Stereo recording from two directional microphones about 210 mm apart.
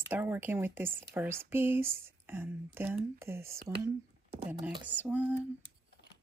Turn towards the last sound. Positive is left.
turn(degrees=-5)  # may be behind; listen again after turning